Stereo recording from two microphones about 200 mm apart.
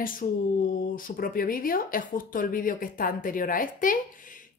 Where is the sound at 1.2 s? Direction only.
45° left (ahead or behind).